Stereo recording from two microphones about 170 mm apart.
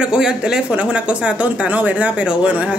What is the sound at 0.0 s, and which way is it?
A woman's voice, 5° right (ahead or behind).